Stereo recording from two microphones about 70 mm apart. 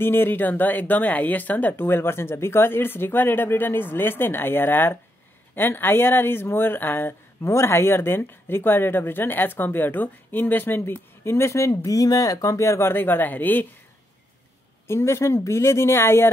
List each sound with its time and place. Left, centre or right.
0.0 s speech: left
7.4 s speech: left
14.9 s speech: left